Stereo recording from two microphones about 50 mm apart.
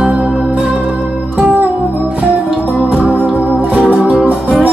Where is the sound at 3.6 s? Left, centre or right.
Right.